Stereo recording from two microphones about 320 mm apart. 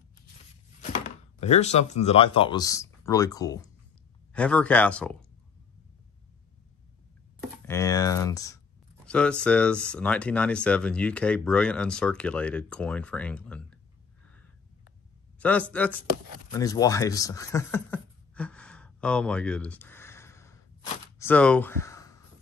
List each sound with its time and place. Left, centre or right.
0.9 s speech: left; by 5.1 s centre
7.6 s speech: centre
15.3 s a sound: centre
15.7 s speech: centre